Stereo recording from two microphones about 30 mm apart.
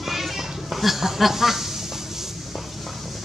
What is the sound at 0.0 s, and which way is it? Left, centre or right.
Goat, centre.